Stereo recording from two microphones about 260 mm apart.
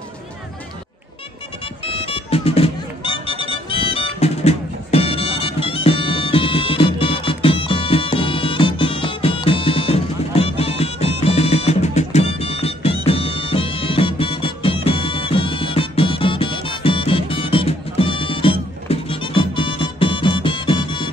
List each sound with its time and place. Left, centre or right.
1.9 s music: left